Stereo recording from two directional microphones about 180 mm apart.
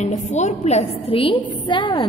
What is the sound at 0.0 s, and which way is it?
A woman's voice, 40° left (ahead or behind).